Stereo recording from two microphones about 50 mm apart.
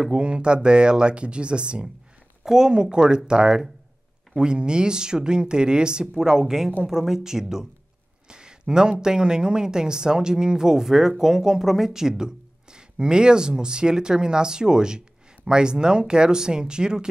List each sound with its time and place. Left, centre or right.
0.1 s speech: right
8.3 s a sound: centre
9.0 s speech: centre